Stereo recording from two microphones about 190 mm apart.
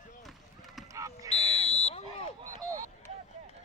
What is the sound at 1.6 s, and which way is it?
Smoke detector, 30° left (ahead or behind).